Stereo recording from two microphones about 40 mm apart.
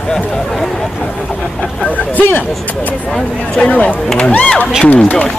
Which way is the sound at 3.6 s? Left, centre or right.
Left.